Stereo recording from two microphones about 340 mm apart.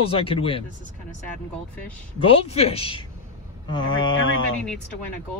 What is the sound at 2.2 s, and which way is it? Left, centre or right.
Speech, centre.